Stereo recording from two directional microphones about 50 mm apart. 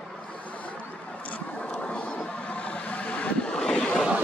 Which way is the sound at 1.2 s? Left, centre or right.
Left.